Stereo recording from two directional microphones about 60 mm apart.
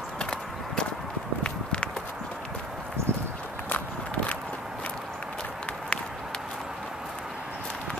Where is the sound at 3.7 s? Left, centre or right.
Left.